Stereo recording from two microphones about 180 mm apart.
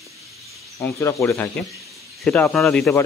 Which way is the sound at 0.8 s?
15° left (ahead or behind).